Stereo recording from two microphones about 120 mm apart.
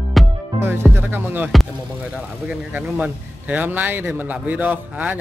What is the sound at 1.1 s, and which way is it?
A man's voice, 15° right (ahead or behind).